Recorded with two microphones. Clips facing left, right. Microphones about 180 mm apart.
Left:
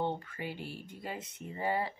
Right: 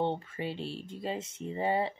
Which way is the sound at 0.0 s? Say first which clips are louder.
Right 3 dB; 25° right (ahead or behind).